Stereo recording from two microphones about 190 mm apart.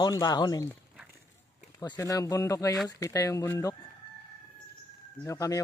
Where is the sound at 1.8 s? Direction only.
20° left (ahead or behind).